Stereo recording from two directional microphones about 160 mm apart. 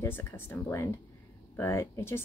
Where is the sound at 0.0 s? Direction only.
15° left (ahead or behind).